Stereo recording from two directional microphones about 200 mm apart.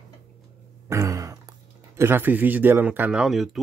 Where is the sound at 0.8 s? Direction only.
15° right (ahead or behind).